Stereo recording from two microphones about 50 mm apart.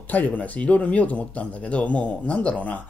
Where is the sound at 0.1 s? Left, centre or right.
Left.